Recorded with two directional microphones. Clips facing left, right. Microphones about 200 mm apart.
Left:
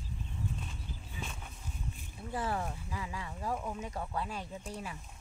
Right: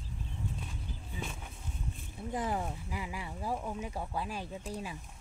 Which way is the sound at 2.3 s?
15° right (ahead or behind).